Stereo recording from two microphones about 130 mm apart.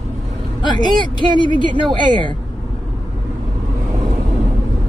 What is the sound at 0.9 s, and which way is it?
Speech, 35° right (ahead or behind).